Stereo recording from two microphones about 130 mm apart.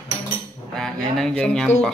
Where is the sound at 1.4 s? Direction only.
5° left (ahead or behind).